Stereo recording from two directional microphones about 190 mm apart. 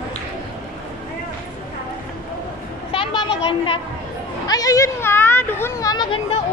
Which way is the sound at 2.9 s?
25° left (ahead or behind).